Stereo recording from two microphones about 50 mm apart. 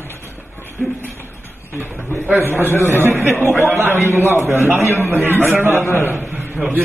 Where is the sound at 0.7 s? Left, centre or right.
Left.